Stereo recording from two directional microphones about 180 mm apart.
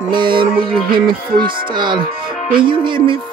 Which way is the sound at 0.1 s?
25° right (ahead or behind).